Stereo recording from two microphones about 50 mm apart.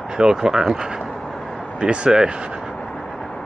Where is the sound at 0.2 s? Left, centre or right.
Centre.